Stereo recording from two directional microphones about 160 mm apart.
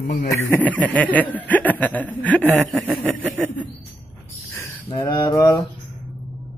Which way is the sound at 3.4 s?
10° left (ahead or behind).